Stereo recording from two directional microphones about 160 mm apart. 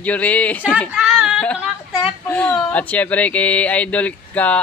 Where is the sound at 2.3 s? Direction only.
10° left (ahead or behind).